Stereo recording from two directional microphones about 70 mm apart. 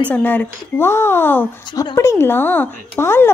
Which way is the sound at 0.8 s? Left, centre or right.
Left.